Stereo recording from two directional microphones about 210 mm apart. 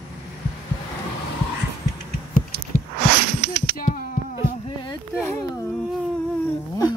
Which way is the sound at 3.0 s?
45° right (ahead or behind).